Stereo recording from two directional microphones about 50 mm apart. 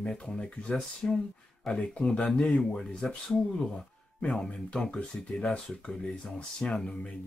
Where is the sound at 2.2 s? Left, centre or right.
Centre.